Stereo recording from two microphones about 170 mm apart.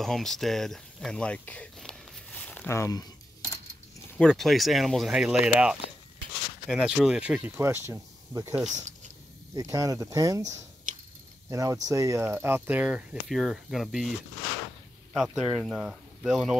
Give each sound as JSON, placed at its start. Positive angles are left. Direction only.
{"t": 0.0, "sound": "speech", "side_deg": 0}
{"t": 2.3, "sound": "a sound", "side_deg": 10}
{"t": 4.1, "sound": "speech", "side_deg": 5}
{"t": 8.6, "sound": "speech", "side_deg": -45}
{"t": 9.5, "sound": "speech", "side_deg": -20}
{"t": 11.5, "sound": "speech", "side_deg": -20}
{"t": 15.1, "sound": "speech", "side_deg": 0}